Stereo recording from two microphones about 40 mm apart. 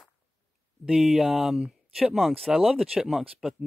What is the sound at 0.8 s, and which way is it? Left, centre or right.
Speech, centre.